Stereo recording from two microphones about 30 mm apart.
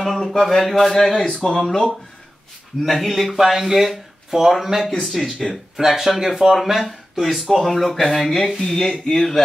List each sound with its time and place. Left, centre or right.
0.0 s a sound: centre
0.3 s a man's voice: centre
1.4 s a man's voice: centre
2.8 s speech: centre
5.0 s speech: centre
5.9 s a man's voice: centre